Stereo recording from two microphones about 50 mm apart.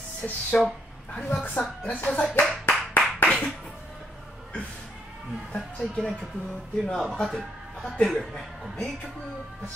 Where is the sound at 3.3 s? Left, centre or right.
Left.